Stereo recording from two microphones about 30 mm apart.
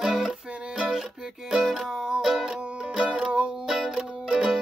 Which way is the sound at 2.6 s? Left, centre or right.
Right.